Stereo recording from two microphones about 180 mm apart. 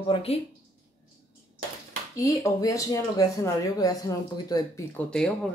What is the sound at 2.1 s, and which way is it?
Speech, 20° left (ahead or behind).